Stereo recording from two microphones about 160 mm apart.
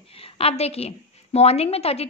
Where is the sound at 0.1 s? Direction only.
35° left (ahead or behind).